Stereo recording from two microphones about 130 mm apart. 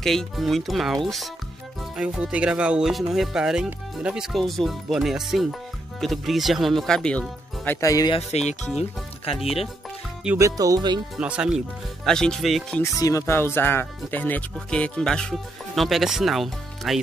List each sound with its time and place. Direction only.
0.0 s speech: 5° left (ahead or behind); by 8.1 s 25° left (ahead or behind)
8.2 s speech: 55° left (ahead or behind)
10.3 s speech: 25° right (ahead or behind)
11.1 s speech: 10° right (ahead or behind)
13.0 s speech: 20° left (ahead or behind); by 17.0 s centre (ahead or behind)